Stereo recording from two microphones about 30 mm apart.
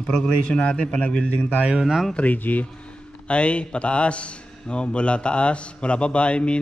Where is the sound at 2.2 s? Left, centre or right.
Left.